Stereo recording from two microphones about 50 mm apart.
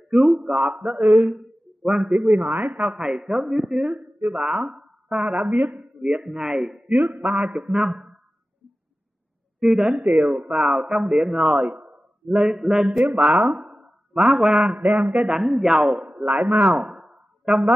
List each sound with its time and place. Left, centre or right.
0.1 s a man's voice: centre
5.7 s speech: right
6.0 s a man's voice: centre
9.6 s a man's voice: centre
11.7 s a sound: right
12.3 s speech: centre
13.7 s a sound: right
14.1 s a man's voice: centre
16.7 s a sound: centre